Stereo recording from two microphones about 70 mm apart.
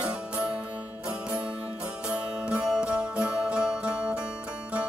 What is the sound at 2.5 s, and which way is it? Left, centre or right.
Music, centre.